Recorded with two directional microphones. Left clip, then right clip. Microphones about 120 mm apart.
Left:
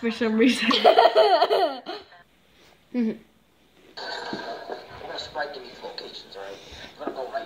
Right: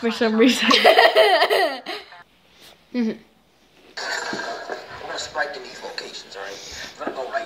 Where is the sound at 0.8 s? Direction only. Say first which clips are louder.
Right 2 dB; 50° right (ahead or behind).